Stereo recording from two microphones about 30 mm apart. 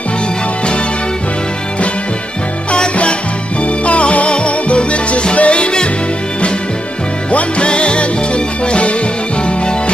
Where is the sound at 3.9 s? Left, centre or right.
Left.